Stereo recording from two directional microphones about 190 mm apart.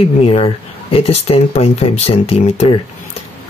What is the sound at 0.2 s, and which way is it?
Speech, 30° left (ahead or behind).